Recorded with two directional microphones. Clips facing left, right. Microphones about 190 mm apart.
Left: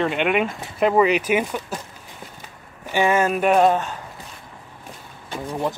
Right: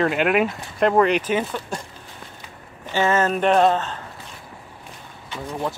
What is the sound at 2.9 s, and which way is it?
Speech, 15° left (ahead or behind).